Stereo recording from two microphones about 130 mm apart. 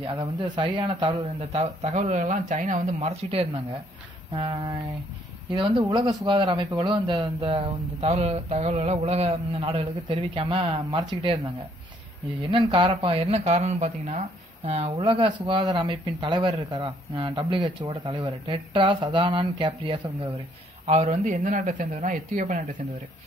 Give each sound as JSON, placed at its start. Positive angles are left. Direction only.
{"t": 0.0, "sound": "a man's voice", "side_deg": -35}
{"t": 4.3, "sound": "speech", "side_deg": -35}
{"t": 8.0, "sound": "speech", "side_deg": -50}
{"t": 12.4, "sound": "speech", "side_deg": -40}
{"t": 20.8, "sound": "speech", "side_deg": -55}